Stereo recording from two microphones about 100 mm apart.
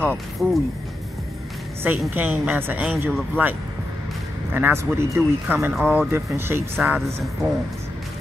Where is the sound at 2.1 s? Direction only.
15° right (ahead or behind).